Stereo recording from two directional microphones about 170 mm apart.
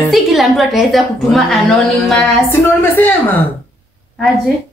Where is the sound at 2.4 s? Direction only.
15° left (ahead or behind).